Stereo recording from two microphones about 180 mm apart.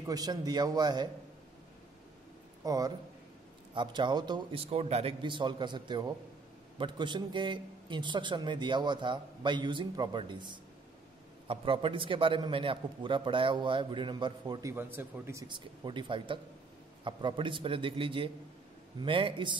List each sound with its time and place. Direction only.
0.0 s a man's voice: 20° right (ahead or behind)
2.6 s a man's voice: 20° right (ahead or behind)
15.4 s a man's voice: 25° right (ahead or behind)